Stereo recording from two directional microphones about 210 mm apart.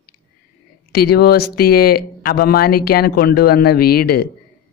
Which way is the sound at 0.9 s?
50° left (ahead or behind).